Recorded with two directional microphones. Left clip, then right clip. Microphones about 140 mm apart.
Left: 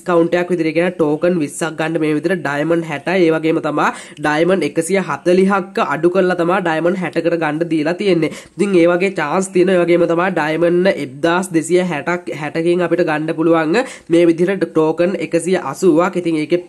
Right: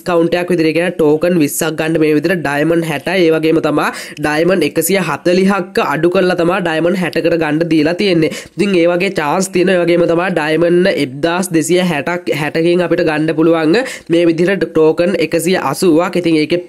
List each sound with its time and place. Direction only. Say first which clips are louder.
0.3 s speech: right 3 dB; 25° right (ahead or behind)
8.5 s speech: even; 20° right (ahead or behind)